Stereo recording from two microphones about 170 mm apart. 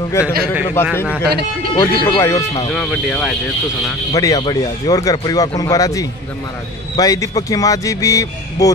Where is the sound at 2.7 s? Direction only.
5° left (ahead or behind).